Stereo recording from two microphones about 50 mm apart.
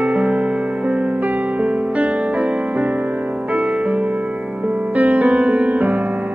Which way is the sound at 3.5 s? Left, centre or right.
Centre.